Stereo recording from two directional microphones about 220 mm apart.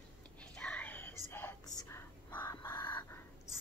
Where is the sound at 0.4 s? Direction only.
5° left (ahead or behind).